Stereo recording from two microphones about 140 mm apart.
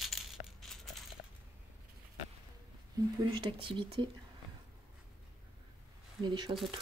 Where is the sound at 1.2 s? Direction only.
90° left.